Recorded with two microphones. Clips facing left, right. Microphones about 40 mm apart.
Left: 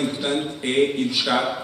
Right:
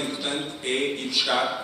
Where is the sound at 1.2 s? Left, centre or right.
Centre.